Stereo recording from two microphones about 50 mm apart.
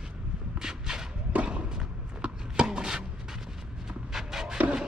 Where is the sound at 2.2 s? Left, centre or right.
Centre.